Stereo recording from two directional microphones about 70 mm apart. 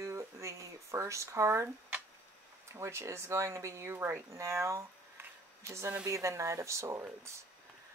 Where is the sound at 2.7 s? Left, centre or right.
Right.